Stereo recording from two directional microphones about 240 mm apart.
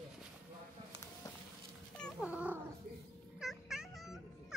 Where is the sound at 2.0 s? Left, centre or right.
Centre.